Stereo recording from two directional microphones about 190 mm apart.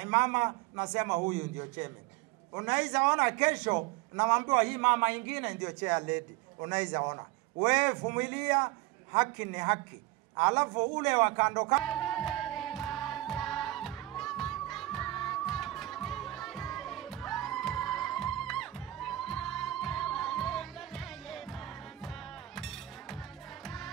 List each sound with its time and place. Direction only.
0.0 s a man's voice: 15° right (ahead or behind)
7.7 s a man's voice: 10° right (ahead or behind)
11.8 s music: centre (ahead or behind)